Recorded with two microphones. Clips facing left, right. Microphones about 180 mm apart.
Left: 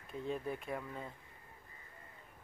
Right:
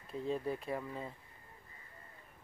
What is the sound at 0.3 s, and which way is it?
Speech, 30° right (ahead or behind).